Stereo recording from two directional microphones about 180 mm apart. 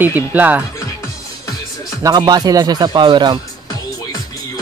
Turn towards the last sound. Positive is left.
turn(degrees=-25)  # may be behind; listen again after turning